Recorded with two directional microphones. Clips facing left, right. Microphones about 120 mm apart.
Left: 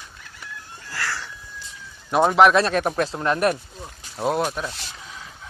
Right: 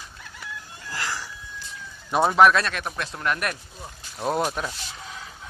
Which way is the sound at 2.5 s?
30° left (ahead or behind).